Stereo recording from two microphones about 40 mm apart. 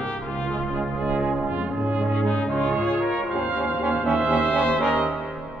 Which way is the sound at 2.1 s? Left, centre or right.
Left.